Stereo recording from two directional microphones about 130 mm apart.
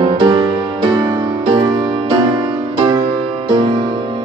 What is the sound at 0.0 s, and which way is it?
Music, 40° right (ahead or behind).